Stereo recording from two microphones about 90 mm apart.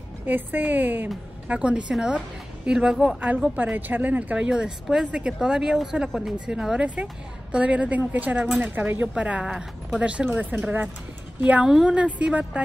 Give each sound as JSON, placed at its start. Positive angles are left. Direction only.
{"t": 0.2, "sound": "a woman's voice", "side_deg": -20}